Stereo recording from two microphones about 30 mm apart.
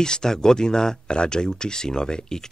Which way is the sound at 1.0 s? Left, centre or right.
Left.